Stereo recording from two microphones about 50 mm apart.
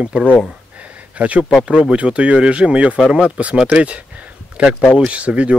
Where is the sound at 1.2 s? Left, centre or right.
Right.